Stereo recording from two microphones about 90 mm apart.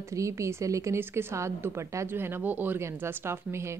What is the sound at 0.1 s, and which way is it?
A woman's voice, 35° right (ahead or behind).